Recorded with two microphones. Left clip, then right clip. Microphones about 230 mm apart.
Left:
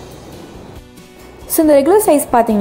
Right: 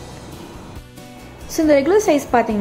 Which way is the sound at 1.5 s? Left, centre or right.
Centre.